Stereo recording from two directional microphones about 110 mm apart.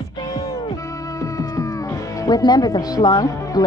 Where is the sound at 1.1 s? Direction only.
30° left (ahead or behind).